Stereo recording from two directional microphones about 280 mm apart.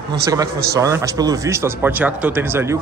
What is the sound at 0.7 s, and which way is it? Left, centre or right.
A man's voice, centre.